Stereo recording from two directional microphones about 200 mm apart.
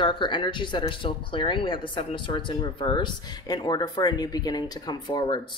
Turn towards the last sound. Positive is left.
turn(degrees=20)  # may be behind; listen again after turning